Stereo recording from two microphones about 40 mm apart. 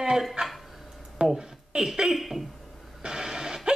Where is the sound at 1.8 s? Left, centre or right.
Centre.